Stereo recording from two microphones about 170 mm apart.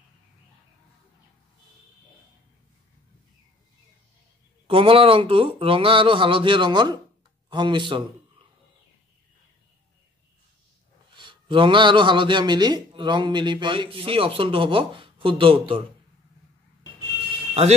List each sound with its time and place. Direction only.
4.6 s a man's voice: 30° right (ahead or behind)
11.1 s a man's voice: 30° right (ahead or behind)